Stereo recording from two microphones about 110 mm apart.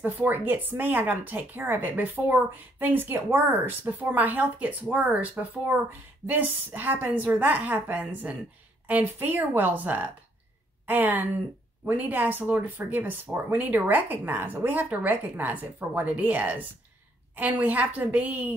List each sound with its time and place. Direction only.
0.0 s speech: 20° right (ahead or behind)